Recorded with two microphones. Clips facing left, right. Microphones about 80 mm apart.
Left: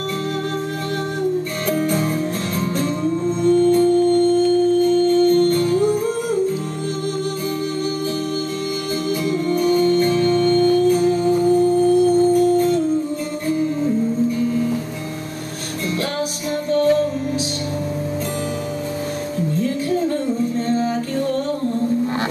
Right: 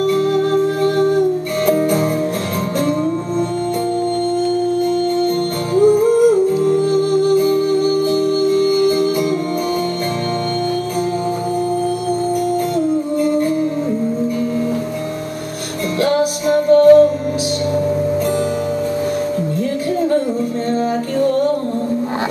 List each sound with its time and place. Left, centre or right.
3.4 s music: right
5.4 s music: right
16.6 s music: right